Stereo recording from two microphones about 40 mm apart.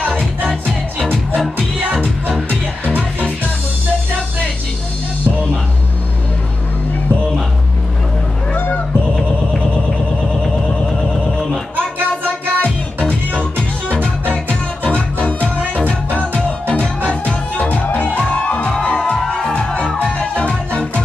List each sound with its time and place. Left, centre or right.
1.9 s music: right
11.7 s music: right
13.3 s music: left
14.9 s music: left
20.2 s music: left